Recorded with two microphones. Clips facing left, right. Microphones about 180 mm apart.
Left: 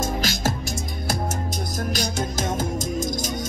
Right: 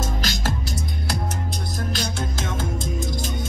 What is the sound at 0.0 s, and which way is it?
Music, 45° left (ahead or behind).